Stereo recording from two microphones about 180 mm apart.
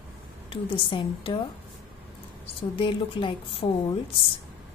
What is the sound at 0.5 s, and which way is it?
Speech, 30° left (ahead or behind).